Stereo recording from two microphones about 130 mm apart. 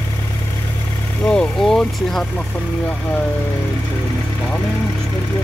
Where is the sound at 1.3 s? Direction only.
5° left (ahead or behind).